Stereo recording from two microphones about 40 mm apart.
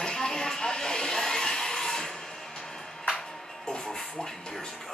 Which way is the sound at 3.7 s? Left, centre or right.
Centre.